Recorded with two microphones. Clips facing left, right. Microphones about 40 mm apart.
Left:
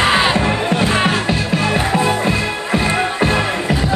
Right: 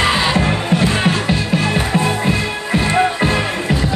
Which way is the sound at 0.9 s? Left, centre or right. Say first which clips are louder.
Left 1 dB; centre.